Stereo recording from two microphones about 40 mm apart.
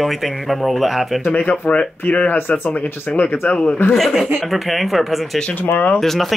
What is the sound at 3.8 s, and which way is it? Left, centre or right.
Speech, left.